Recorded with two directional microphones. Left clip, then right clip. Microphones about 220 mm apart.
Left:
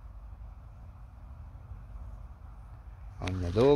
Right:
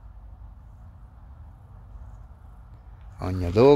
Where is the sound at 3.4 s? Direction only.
35° right (ahead or behind).